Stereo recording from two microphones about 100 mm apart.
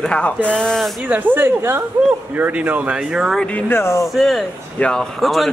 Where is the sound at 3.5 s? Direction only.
25° left (ahead or behind).